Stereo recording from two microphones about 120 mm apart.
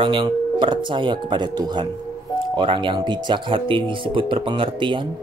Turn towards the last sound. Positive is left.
turn(degrees=-45)  # may be behind; listen again after turning